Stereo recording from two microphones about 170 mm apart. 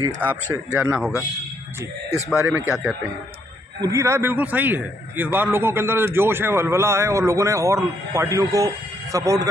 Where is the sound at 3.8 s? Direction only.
15° right (ahead or behind).